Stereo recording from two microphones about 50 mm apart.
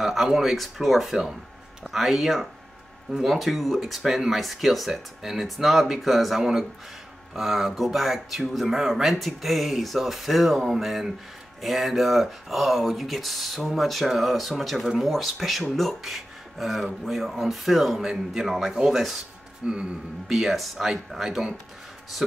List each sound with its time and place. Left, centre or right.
0.0 s speech: centre
19.6 s speech: right
20.2 s speech: centre